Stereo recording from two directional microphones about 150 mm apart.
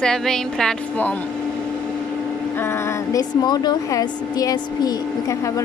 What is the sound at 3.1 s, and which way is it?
Speech, 25° left (ahead or behind).